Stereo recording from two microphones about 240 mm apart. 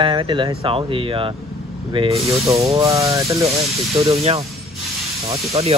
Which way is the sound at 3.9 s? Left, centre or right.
Right.